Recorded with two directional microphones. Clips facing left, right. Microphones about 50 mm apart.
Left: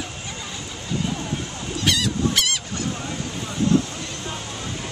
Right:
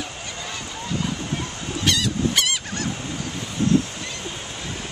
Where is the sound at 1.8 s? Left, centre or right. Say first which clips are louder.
Even; centre.